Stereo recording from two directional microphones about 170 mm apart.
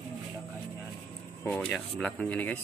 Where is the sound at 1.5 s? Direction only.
5° left (ahead or behind).